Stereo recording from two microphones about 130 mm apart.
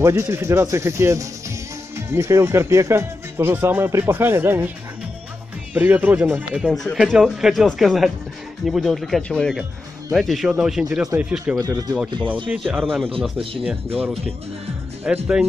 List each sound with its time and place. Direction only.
0.0 s speech: 20° right (ahead or behind)
5.8 s speech: 15° right (ahead or behind)
6.6 s speech: centre (ahead or behind)
11.5 s speech: 25° right (ahead or behind)
12.4 s speech: 15° right (ahead or behind)
12.8 s speech: 5° left (ahead or behind)
13.4 s speech: 45° right (ahead or behind)
13.9 s speech: 10° right (ahead or behind)